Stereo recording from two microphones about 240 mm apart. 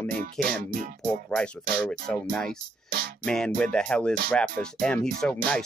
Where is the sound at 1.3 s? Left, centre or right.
Centre.